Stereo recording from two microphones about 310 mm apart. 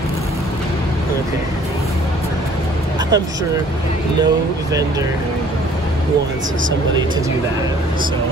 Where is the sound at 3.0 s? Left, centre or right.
Centre.